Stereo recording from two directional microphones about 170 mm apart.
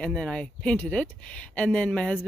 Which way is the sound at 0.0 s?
5° left (ahead or behind).